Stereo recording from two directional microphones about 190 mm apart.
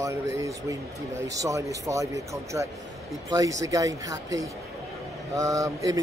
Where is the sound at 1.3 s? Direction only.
15° right (ahead or behind).